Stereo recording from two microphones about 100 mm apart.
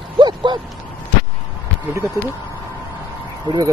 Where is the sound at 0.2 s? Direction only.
50° right (ahead or behind).